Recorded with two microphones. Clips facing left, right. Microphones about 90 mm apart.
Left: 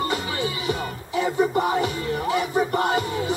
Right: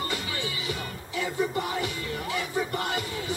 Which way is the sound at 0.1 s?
30° left (ahead or behind).